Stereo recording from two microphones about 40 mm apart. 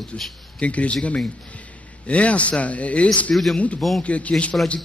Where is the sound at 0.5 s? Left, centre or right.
Left.